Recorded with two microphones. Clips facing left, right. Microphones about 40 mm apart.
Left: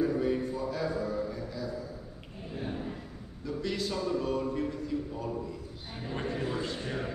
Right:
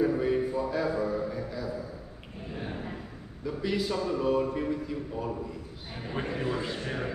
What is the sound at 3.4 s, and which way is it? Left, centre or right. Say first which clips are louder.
A man's voice: right 3 dB; centre.